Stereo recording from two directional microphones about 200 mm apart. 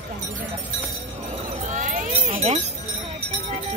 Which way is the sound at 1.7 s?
40° right (ahead or behind).